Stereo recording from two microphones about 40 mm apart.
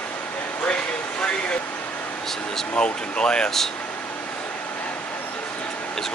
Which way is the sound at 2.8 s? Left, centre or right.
Left.